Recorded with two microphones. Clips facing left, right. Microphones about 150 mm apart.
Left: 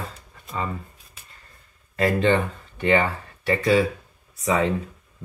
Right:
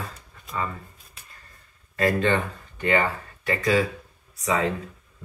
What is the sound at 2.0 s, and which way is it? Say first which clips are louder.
Speech: left 2 dB; 20° left (ahead or behind).